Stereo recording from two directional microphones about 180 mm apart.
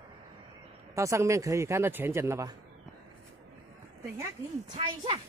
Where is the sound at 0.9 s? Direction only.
15° right (ahead or behind).